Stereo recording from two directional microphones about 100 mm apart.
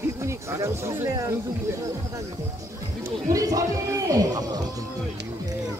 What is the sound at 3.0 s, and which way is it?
A woman's voice, 35° right (ahead or behind).